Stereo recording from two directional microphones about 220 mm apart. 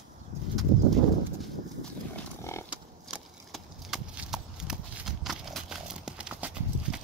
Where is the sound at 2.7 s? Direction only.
Centre (ahead or behind).